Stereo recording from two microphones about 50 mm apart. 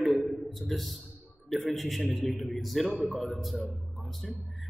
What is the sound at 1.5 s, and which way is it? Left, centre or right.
A man's voice, centre.